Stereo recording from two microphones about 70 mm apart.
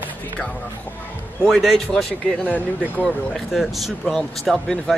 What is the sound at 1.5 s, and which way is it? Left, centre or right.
Speech, centre.